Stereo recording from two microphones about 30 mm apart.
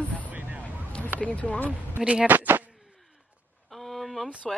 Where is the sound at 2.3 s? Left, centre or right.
Right.